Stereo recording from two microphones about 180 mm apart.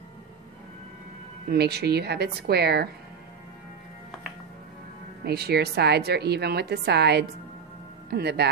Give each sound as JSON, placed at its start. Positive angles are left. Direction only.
{"t": 1.5, "sound": "a woman's voice", "side_deg": -65}
{"t": 5.2, "sound": "a woman's voice", "side_deg": -65}